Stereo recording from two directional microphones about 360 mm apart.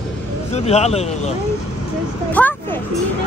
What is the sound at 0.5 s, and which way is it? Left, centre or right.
Speech, centre.